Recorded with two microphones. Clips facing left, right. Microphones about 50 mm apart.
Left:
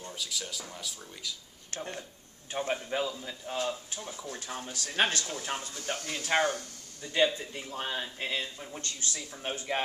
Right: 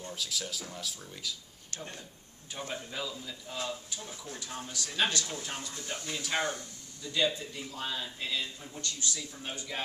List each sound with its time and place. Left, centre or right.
0.0 s speech: centre
1.7 s speech: left
5.8 s speech: left